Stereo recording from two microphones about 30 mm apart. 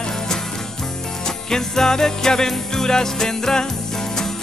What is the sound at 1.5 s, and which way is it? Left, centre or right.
Music, centre.